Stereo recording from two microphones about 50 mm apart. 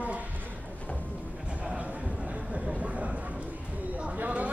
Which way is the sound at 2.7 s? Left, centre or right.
Right.